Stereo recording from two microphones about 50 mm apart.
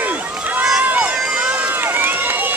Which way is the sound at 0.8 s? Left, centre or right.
Right.